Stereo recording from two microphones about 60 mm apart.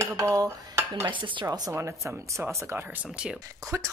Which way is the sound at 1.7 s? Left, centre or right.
Right.